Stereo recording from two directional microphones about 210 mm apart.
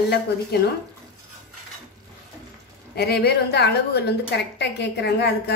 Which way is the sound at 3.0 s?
50° left (ahead or behind).